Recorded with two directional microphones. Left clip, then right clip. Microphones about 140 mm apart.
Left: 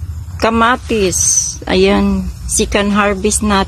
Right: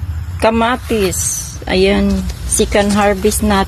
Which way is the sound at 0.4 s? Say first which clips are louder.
Left 1 dB; 60° left (ahead or behind).